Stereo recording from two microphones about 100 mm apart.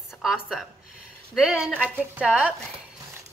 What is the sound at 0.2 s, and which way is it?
A woman's voice, centre (ahead or behind).